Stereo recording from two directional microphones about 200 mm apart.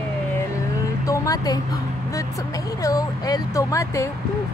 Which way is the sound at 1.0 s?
15° left (ahead or behind).